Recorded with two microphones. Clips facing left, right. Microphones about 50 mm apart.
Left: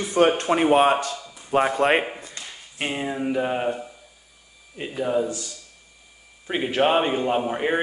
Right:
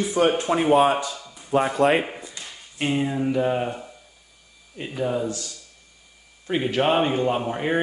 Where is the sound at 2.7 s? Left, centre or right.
Centre.